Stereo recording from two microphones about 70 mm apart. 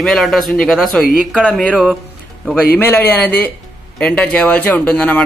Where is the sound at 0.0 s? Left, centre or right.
Centre.